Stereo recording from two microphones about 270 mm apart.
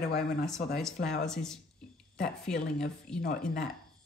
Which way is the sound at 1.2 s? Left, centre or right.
Centre.